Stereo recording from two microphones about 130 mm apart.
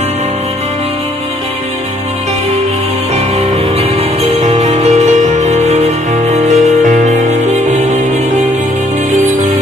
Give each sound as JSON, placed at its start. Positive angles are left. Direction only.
{"t": 4.2, "sound": "music", "side_deg": -60}